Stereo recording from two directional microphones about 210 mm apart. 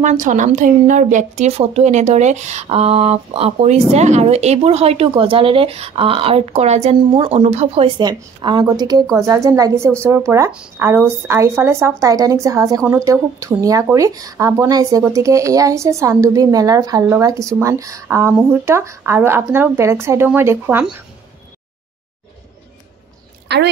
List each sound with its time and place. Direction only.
0.0 s a woman's voice: 35° right (ahead or behind); by 20.9 s 10° right (ahead or behind)
23.5 s a woman's voice: 55° right (ahead or behind)